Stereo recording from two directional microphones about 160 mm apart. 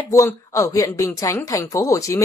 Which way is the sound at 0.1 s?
20° left (ahead or behind).